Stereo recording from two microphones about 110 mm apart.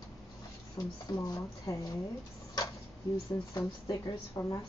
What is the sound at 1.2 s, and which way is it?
Speech, 30° left (ahead or behind).